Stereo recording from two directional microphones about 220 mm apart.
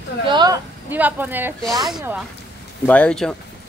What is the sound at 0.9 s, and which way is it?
Speech, 10° right (ahead or behind).